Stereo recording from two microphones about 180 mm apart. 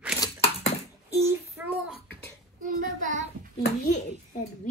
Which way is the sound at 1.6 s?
15° right (ahead or behind).